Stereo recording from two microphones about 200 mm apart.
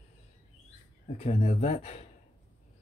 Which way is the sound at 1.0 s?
35° left (ahead or behind).